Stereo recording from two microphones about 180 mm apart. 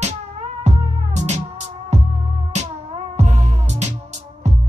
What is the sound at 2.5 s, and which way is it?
Music, 40° right (ahead or behind).